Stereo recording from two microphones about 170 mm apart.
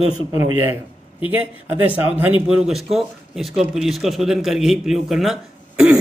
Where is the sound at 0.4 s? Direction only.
15° right (ahead or behind).